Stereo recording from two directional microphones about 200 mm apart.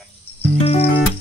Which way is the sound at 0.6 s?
30° left (ahead or behind).